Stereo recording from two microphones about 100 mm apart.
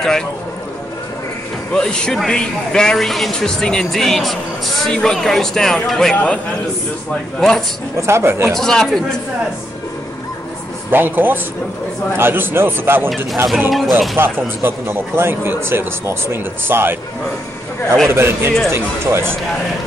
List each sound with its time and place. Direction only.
1.7 s a man's voice: 10° left (ahead or behind)
8.0 s speech: 25° right (ahead or behind)
8.5 s a man's voice: 5° left (ahead or behind)
10.9 s speech: 20° right (ahead or behind)
13.7 s a man's voice: centre (ahead or behind)
14.1 s speech: 25° right (ahead or behind)
18.0 s speech: 25° right (ahead or behind)